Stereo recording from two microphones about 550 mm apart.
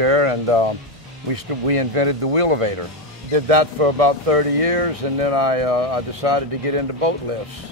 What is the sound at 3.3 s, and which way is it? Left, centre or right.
Speech, right.